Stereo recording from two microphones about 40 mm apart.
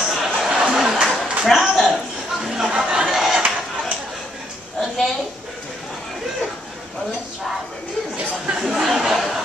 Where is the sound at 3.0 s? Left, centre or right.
Centre.